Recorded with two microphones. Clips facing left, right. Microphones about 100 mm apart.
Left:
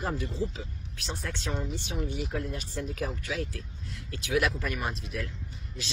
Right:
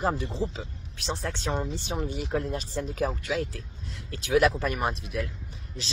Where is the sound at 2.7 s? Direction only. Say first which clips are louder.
Right 5 dB; 30° right (ahead or behind).